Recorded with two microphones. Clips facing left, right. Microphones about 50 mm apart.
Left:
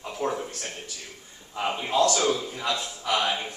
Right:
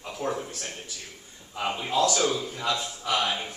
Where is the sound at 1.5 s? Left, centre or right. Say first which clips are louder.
Left 1 dB; centre.